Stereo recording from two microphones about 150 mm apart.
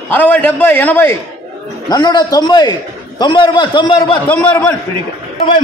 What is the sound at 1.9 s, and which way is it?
A man's voice, 25° left (ahead or behind).